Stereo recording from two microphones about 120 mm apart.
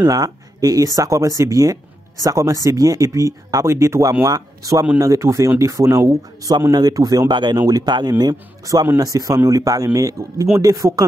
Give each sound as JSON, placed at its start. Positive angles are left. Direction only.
{"t": 0.0, "sound": "speech", "side_deg": -30}